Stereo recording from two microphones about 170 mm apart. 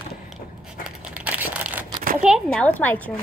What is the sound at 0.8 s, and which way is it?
Crumpling, 10° right (ahead or behind).